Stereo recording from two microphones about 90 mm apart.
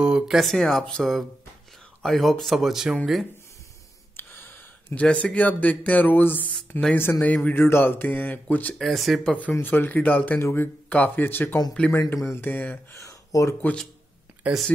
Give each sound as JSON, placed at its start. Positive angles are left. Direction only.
{"t": 0.0, "sound": "speech", "side_deg": -5}
{"t": 4.2, "sound": "a sound", "side_deg": 25}
{"t": 5.0, "sound": "speech", "side_deg": 15}
{"t": 8.7, "sound": "speech", "side_deg": 0}
{"t": 9.2, "sound": "speech", "side_deg": 15}
{"t": 13.0, "sound": "a sound", "side_deg": 35}